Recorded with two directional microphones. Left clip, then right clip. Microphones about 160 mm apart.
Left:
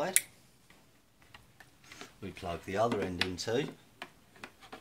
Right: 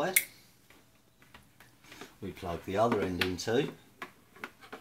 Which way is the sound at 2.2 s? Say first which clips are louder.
Right 1 dB; centre (ahead or behind).